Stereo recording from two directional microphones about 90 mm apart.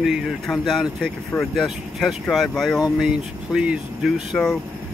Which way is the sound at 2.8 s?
10° right (ahead or behind).